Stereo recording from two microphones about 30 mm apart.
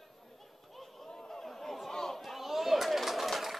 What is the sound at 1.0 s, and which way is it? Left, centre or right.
Chatter, centre.